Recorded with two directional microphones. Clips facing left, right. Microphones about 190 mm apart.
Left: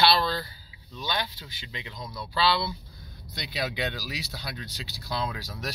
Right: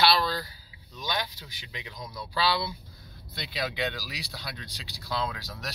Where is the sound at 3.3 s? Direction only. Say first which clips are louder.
Left 1 dB; centre (ahead or behind).